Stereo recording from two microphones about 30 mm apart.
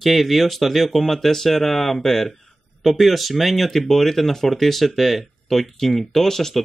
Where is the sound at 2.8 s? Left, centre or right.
Centre.